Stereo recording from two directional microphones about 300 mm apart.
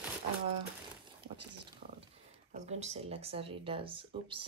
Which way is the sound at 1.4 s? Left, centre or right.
Right.